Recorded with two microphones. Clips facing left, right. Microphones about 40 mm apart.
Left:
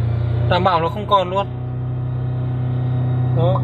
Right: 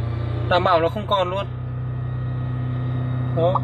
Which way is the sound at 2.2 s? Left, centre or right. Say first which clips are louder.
Left 4 dB; centre.